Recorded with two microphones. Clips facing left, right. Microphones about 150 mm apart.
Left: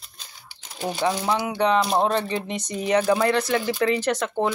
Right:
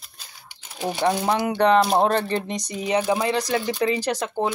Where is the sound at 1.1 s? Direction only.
50° right (ahead or behind).